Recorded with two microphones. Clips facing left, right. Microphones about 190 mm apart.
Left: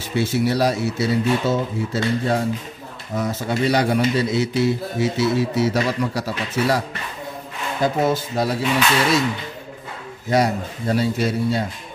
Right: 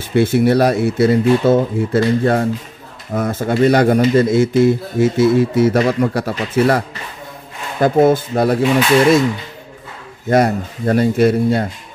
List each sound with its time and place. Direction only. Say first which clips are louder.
0.1 s speech: right 7 dB; 55° right (ahead or behind)
7.8 s speech: right 8 dB; 55° right (ahead or behind)
10.3 s speech: right 5 dB; 55° right (ahead or behind)